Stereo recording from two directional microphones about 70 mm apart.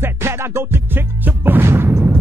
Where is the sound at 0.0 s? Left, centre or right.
Right.